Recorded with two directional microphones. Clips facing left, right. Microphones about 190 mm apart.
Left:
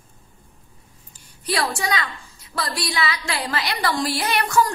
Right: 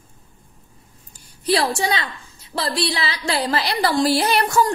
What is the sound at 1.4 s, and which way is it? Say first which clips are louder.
A woman's voice: right 5 dB; 30° right (ahead or behind).